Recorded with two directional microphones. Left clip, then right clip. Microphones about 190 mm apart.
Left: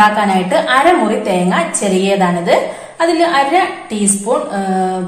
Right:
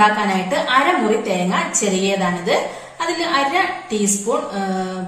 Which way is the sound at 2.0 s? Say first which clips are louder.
Left 6 dB; 35° left (ahead or behind).